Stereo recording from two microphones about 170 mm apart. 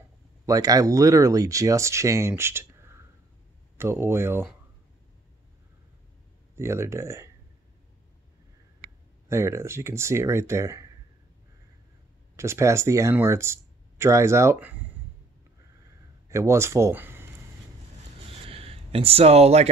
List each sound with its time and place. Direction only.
0.5 s speech: 20° right (ahead or behind)
6.5 s speech: 15° right (ahead or behind)
9.3 s speech: 15° right (ahead or behind)
12.4 s speech: 15° right (ahead or behind)
16.3 s speech: 15° right (ahead or behind)
18.4 s a sound: 35° right (ahead or behind)